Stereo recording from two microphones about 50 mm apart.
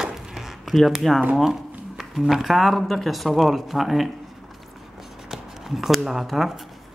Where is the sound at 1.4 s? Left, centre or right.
Centre.